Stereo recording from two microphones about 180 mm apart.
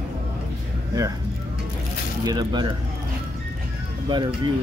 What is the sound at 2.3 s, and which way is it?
Speech, 20° right (ahead or behind).